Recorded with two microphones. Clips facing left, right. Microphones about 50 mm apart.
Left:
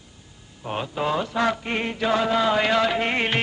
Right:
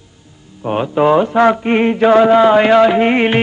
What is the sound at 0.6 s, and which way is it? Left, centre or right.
Mantra, right.